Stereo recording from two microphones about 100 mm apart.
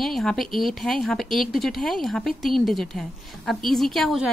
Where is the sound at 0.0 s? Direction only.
5° left (ahead or behind).